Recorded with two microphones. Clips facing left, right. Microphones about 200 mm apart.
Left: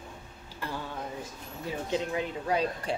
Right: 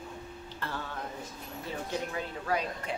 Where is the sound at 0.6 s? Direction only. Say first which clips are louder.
Left 2 dB; 10° left (ahead or behind).